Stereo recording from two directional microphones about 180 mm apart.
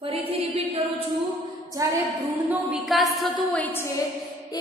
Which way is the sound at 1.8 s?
15° right (ahead or behind).